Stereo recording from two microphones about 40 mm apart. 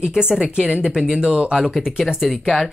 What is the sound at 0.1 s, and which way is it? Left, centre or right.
Speech, centre.